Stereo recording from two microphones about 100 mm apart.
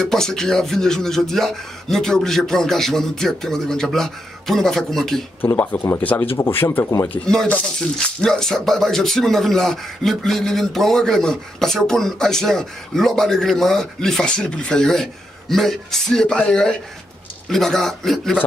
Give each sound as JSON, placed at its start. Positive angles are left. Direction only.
{"t": 0.0, "sound": "speech", "side_deg": 5}
{"t": 5.4, "sound": "speech", "side_deg": 15}
{"t": 7.1, "sound": "speech", "side_deg": 10}